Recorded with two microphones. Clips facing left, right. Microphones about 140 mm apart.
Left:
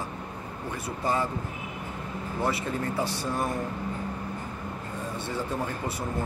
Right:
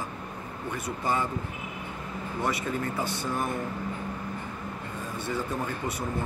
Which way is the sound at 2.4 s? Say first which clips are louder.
Left 1 dB; 30° left (ahead or behind).